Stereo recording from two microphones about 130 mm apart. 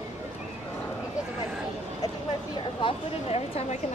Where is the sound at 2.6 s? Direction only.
40° left (ahead or behind).